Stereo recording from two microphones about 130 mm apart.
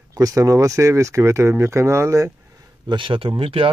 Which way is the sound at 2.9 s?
40° right (ahead or behind).